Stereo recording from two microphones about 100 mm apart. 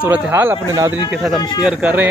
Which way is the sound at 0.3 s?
20° right (ahead or behind).